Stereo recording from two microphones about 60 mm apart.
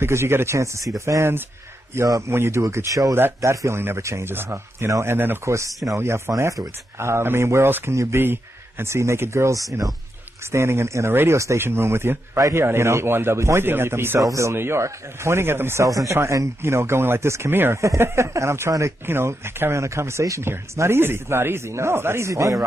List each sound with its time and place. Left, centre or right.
0.0 s speech: right
5.4 s speech: right
8.2 s speech: right
14.2 s speech: right
14.5 s speech: right
15.8 s speech: right
16.2 s speech: right
17.7 s speech: right
19.0 s speech: right